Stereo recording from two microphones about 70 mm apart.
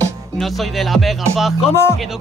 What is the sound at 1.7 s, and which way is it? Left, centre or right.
Speech, left.